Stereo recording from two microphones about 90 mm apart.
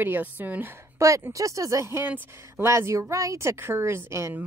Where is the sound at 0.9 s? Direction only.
35° right (ahead or behind).